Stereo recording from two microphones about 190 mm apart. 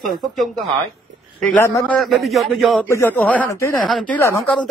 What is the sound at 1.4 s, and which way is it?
Speech, 10° left (ahead or behind).